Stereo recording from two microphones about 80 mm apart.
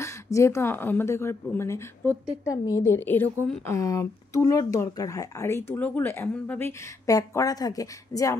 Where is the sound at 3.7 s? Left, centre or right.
Left.